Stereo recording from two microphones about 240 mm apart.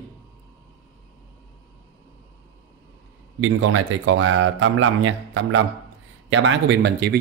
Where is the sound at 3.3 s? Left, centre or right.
Right.